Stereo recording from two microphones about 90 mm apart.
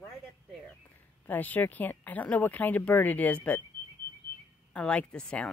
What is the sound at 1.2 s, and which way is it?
Speech, 20° left (ahead or behind).